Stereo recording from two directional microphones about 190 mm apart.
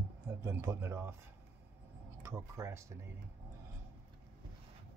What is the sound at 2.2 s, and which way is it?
Speech, 15° right (ahead or behind).